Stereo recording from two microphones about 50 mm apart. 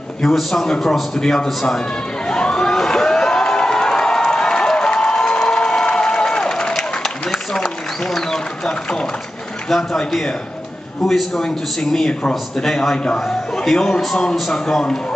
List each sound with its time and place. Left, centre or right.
0.2 s a man's voice: centre
2.2 s a sound: centre
9.7 s a man's voice: centre
12.1 s speech: centre
12.5 s a man's voice: centre